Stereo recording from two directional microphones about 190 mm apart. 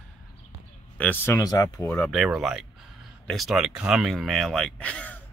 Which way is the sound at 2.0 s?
Centre (ahead or behind).